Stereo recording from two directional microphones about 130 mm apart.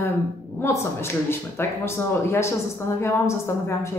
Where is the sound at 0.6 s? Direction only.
20° left (ahead or behind).